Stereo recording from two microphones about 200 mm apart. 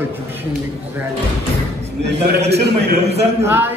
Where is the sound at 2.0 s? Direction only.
55° right (ahead or behind).